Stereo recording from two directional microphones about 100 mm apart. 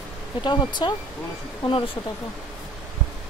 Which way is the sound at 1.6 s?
60° left (ahead or behind).